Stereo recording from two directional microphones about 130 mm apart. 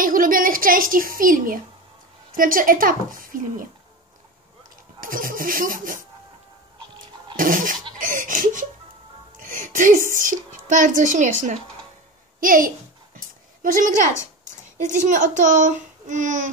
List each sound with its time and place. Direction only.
0.0 s a woman's voice: 90° right
5.0 s speech: 90° right
7.3 s speech: 90° right
9.4 s music: 90° right
10.1 s speech: 90° right
12.4 s a sound: 90° right
14.8 s a child's voice: 70° right (ahead or behind)